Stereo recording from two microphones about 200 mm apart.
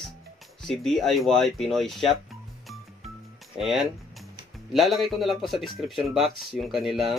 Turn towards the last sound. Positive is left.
turn(degrees=0)  # may be behind; listen again after turning